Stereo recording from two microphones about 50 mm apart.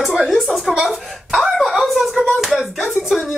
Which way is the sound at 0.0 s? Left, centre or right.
Centre.